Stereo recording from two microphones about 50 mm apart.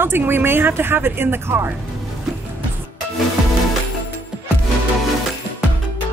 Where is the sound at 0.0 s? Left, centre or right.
Right.